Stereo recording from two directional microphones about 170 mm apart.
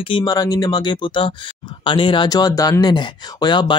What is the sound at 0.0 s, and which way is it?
Speech, 25° left (ahead or behind).